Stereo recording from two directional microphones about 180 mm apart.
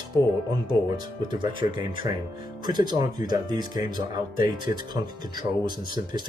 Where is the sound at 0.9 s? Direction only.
25° right (ahead or behind).